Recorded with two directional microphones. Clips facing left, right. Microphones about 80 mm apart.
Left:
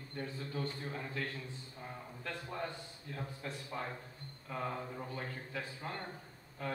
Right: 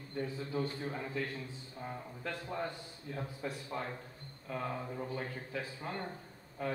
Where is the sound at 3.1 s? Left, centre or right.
Centre.